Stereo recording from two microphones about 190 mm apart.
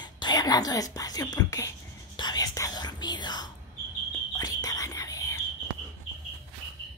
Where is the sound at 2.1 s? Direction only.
20° left (ahead or behind).